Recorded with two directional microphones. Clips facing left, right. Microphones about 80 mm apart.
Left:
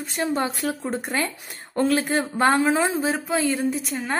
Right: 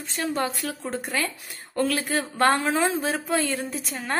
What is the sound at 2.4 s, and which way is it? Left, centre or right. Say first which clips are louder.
A woman's voice: left 2 dB; centre.